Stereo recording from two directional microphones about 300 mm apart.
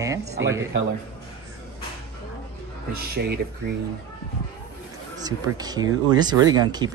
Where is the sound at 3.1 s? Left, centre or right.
Right.